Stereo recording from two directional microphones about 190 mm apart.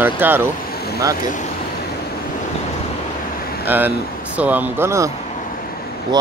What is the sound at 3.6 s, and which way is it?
Speech, 10° right (ahead or behind).